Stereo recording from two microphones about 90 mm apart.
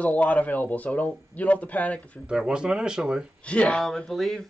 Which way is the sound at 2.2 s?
10° right (ahead or behind).